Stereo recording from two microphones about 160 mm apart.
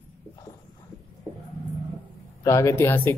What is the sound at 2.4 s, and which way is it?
Speech, 20° left (ahead or behind).